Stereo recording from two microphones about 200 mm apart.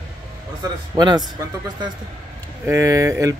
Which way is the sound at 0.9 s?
20° right (ahead or behind).